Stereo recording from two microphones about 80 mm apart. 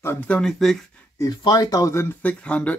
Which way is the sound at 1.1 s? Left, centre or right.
Left.